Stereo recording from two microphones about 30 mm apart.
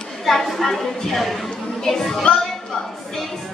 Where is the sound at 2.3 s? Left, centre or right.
Left.